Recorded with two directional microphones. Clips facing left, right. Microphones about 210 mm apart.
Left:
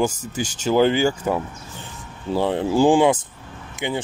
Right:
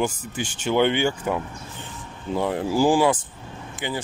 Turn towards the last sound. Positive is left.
turn(degrees=25)  # may be behind; listen again after turning